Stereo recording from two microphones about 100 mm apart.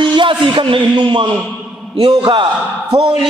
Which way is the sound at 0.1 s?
55° right (ahead or behind).